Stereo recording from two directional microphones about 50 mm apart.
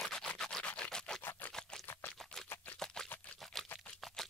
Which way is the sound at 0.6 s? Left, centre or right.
Left.